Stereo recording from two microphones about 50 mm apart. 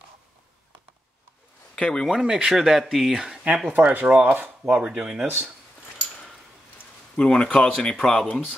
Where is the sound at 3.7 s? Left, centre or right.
Right.